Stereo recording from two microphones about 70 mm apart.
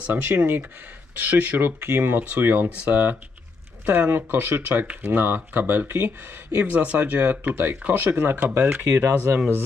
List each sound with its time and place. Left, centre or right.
0.1 s speech: right